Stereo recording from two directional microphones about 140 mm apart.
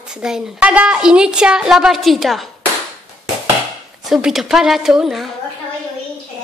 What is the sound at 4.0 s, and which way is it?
A woman's voice, centre (ahead or behind).